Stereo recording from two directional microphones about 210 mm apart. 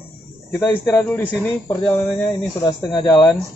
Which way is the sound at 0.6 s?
10° left (ahead or behind).